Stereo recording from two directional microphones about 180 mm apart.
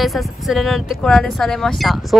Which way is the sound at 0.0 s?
Centre (ahead or behind).